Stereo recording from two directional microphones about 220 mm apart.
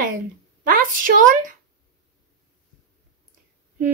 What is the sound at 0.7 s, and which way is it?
Speech, 40° right (ahead or behind).